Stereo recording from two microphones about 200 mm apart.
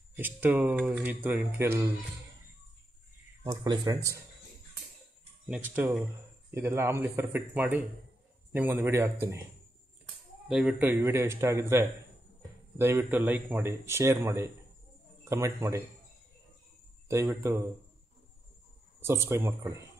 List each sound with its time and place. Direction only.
0.1 s speech: 10° right (ahead or behind)
3.4 s speech: 20° right (ahead or behind)
5.5 s speech: 10° right (ahead or behind)
10.5 s speech: 5° right (ahead or behind)
17.1 s speech: 15° right (ahead or behind)
18.9 s speech: 10° right (ahead or behind)